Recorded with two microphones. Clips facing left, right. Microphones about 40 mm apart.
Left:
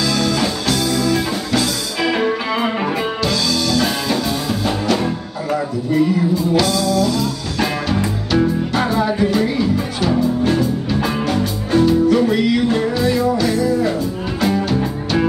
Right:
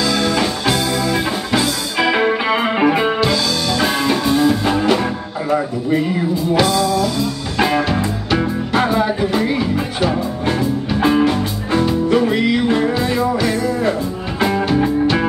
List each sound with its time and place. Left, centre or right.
0.0 s music: right